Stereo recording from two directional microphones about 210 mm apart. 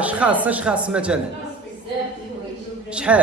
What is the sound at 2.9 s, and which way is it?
Speech, 5° right (ahead or behind).